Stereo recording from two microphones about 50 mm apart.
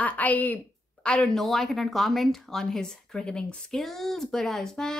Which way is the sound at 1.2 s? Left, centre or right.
Centre.